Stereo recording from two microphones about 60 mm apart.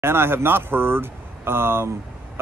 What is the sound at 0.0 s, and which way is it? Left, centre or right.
Speech, right.